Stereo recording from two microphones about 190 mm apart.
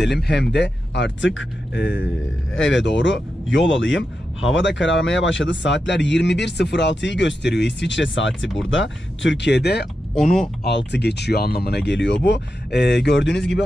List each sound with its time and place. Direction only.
0.1 s speech: 65° left (ahead or behind)
2.5 s speech: 80° left; by 9.8 s 60° left (ahead or behind)
10.9 s speech: 60° left (ahead or behind)